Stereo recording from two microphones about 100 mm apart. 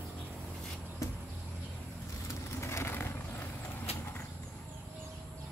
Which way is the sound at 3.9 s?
90° left.